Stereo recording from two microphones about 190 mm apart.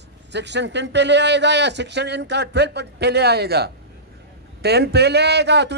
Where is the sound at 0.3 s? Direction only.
65° right (ahead or behind).